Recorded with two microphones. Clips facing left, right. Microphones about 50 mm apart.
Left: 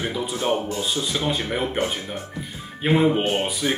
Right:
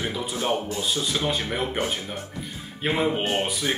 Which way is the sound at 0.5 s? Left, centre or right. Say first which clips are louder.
Left 2 dB; left.